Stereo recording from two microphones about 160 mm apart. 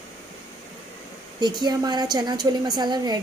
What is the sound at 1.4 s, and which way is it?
A woman's voice, 25° right (ahead or behind).